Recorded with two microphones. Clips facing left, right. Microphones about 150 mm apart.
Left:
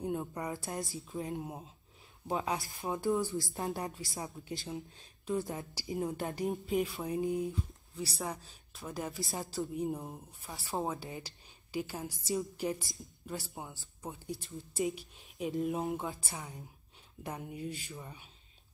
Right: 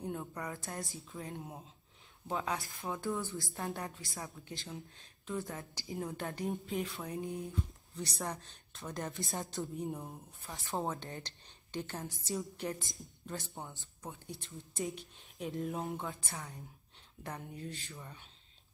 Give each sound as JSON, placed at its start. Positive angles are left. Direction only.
{"t": 0.0, "sound": "a sound", "side_deg": 20}
{"t": 0.7, "sound": "speech", "side_deg": 20}
{"t": 3.0, "sound": "speech", "side_deg": 10}